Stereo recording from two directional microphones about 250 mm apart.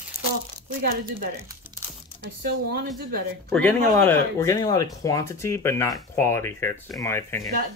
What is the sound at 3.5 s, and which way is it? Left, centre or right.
Speech, centre.